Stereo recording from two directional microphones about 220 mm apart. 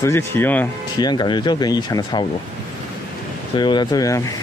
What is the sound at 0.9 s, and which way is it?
Speech, 20° left (ahead or behind).